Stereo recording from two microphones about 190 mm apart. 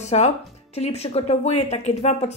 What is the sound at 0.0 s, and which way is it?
Speech, 35° left (ahead or behind).